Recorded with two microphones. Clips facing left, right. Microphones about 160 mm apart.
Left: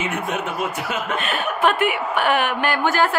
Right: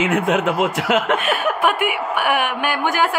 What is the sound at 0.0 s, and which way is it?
Speech, 90° right.